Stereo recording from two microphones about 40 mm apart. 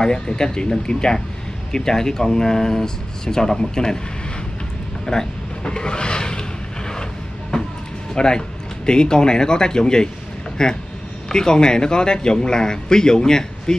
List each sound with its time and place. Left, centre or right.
0.0 s speech: centre
5.0 s speech: centre
7.5 s a sound: centre
8.1 s speech: centre